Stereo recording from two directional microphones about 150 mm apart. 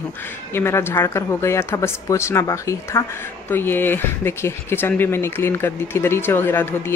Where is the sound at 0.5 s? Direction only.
15° left (ahead or behind).